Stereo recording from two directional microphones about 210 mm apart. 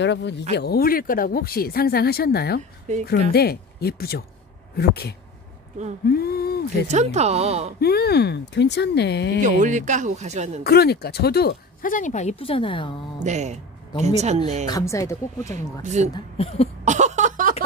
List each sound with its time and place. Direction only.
0.0 s speech: 55° left (ahead or behind)
6.9 s a man's voice: 30° right (ahead or behind)
7.8 s speech: 50° left (ahead or behind)
9.4 s a man's voice: 35° right (ahead or behind)
10.6 s speech: 50° left (ahead or behind); by 12.9 s 25° left (ahead or behind)
13.2 s a man's voice: 35° right (ahead or behind)
14.7 s speech: 15° left (ahead or behind)
15.5 s a man's voice: 35° right (ahead or behind)
16.1 s speech: 30° left (ahead or behind)
16.8 s a sound: 35° right (ahead or behind)